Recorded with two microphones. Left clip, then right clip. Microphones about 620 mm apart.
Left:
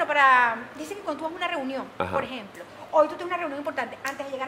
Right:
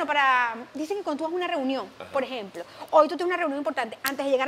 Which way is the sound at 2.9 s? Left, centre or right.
Right.